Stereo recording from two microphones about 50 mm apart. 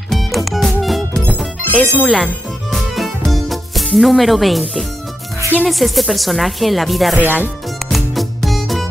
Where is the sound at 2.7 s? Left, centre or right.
Centre.